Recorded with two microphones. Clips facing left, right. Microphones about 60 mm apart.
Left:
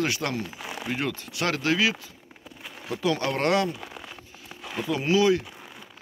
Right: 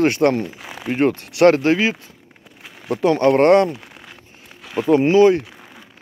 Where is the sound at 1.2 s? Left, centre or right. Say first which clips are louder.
Right 16 dB; right.